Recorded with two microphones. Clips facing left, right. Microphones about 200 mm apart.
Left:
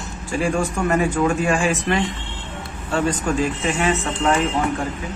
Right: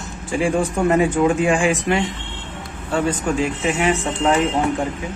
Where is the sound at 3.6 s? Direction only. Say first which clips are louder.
Right 2 dB; 10° right (ahead or behind).